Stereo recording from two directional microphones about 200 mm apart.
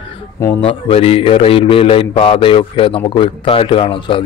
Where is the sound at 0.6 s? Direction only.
30° left (ahead or behind).